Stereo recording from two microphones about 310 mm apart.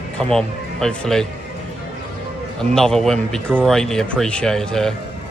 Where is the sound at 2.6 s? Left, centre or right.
Centre.